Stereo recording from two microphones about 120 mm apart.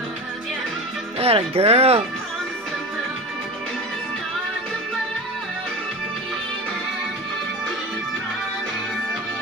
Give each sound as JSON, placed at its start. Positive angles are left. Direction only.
{"t": 1.2, "sound": "speech", "side_deg": -55}